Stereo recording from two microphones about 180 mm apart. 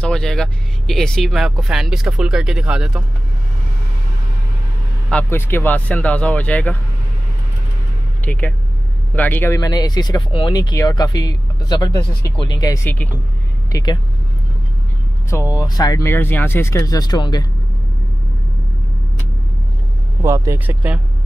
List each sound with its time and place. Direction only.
0.0 s speech: 5° left (ahead or behind)
5.1 s speech: 10° left (ahead or behind)
8.3 s speech: 10° left (ahead or behind)
15.2 s speech: 15° left (ahead or behind)
20.2 s speech: 15° right (ahead or behind)